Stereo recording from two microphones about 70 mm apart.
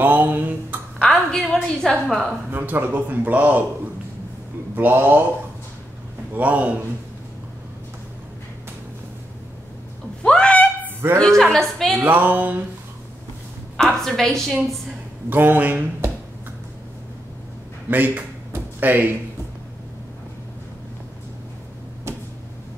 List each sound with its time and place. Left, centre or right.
0.0 s a sound: right
1.1 s a woman's voice: centre
2.2 s speech: right
4.7 s speech: right
6.3 s speech: right
10.2 s a sound: centre
11.1 s a woman's voice: centre
11.9 s speech: right
13.7 s a woman's voice: centre
15.2 s speech: right
17.8 s a sound: right